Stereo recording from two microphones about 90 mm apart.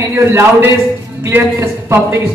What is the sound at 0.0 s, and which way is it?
A man's voice, 30° right (ahead or behind).